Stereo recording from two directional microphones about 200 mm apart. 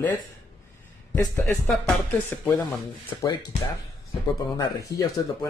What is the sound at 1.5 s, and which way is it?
Speech, centre (ahead or behind).